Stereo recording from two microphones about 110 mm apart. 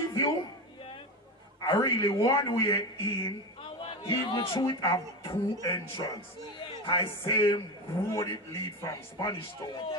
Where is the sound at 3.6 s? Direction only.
55° left (ahead or behind).